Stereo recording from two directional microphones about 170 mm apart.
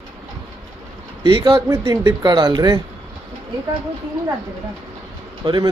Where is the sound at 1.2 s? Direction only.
25° right (ahead or behind).